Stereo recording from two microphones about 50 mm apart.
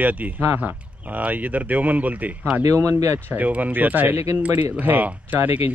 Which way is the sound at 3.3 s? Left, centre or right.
Right.